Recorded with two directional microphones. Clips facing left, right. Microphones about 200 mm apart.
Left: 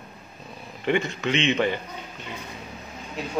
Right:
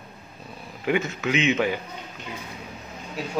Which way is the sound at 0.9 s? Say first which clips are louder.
Even; 5° right (ahead or behind).